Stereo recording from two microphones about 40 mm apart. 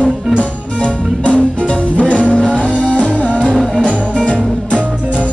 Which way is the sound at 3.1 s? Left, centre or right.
Right.